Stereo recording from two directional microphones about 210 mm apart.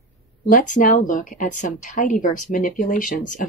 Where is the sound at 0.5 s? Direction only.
40° left (ahead or behind).